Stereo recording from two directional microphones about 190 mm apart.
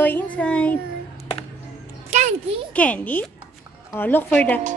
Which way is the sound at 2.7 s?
5° left (ahead or behind).